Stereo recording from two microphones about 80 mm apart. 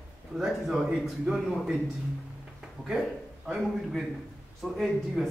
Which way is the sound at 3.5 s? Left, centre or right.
Centre.